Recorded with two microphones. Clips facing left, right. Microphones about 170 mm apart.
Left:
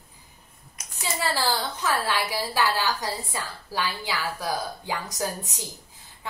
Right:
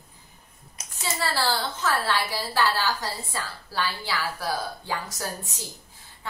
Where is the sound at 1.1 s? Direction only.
15° left (ahead or behind).